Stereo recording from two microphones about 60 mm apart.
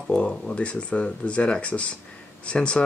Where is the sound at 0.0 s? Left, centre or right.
Centre.